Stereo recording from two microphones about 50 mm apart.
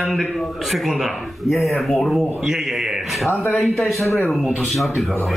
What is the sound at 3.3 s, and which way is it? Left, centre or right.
Speech, left.